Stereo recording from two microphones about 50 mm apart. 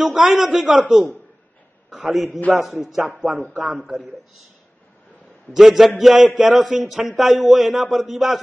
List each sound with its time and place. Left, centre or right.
0.0 s a man's voice: centre
3.2 s a man's voice: centre
5.5 s a man's voice: centre